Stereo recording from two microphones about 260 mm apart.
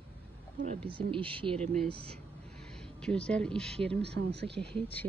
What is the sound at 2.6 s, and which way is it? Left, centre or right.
Speech, centre.